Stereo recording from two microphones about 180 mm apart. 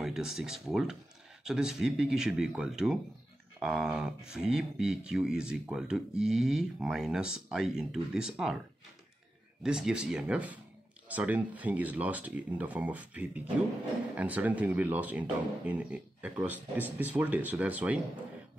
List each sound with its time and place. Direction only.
0.0 s speech: centre (ahead or behind)
9.6 s speech: 5° right (ahead or behind)